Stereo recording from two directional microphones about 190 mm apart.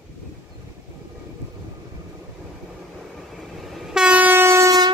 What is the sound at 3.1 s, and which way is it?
Train, centre (ahead or behind).